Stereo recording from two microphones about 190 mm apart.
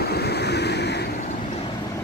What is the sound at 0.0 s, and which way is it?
Vehicle, 60° left (ahead or behind).